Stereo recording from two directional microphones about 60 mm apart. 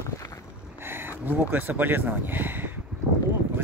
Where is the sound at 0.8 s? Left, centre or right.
Right.